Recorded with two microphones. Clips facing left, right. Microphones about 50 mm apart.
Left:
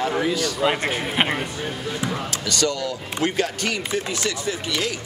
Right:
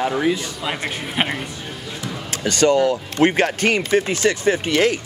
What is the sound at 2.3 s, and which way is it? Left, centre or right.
Speech, right.